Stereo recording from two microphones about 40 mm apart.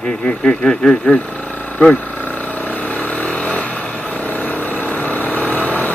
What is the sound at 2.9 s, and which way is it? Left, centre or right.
Vehicle, left.